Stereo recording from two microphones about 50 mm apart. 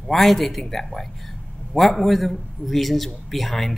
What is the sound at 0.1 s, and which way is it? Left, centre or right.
Speech, centre.